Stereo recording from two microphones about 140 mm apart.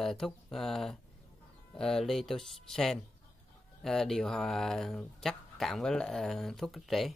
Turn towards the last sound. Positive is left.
turn(degrees=0)  # may be behind; listen again after turning